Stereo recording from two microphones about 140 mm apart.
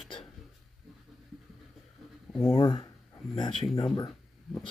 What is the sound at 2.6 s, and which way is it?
Speech, 35° left (ahead or behind).